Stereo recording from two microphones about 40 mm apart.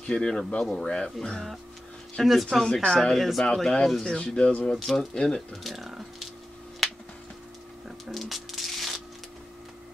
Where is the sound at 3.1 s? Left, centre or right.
Centre.